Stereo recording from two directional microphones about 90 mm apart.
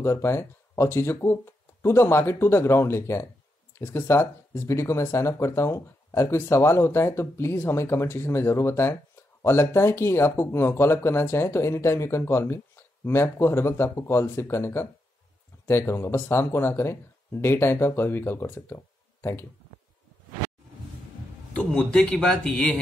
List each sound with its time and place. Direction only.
0.0 s speech: 30° left (ahead or behind)
22.1 s speech: 5° left (ahead or behind)